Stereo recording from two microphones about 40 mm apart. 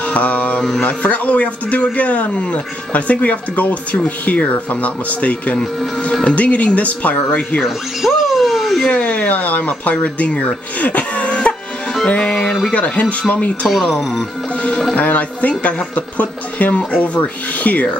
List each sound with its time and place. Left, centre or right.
0.1 s a man's voice: left
0.6 s music: centre
0.8 s a man's voice: left
7.6 s a sound: centre
8.8 s a man's voice: left
12.1 s music: left
12.7 s a man's voice: left
13.7 s speech: centre
15.0 s a man's voice: left